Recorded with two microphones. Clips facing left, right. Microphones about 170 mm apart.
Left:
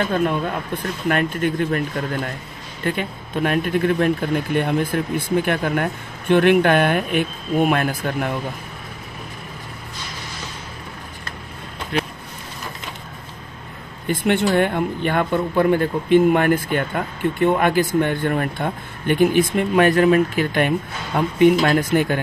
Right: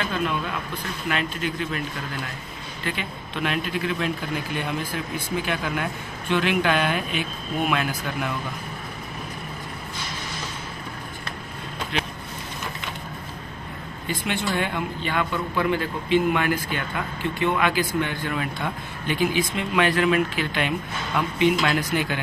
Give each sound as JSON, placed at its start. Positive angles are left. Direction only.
{"t": 0.0, "sound": "a man's voice", "side_deg": 45}
{"t": 14.0, "sound": "a man's voice", "side_deg": 55}